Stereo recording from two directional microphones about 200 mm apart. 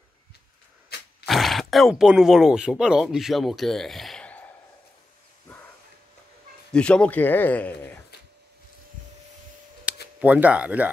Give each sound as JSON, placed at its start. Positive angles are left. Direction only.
{"t": 0.9, "sound": "roar", "side_deg": 55}
{"t": 1.2, "sound": "speech", "side_deg": 0}
{"t": 6.7, "sound": "speech", "side_deg": 5}
{"t": 9.9, "sound": "camera", "side_deg": -5}
{"t": 10.2, "sound": "speech", "side_deg": -5}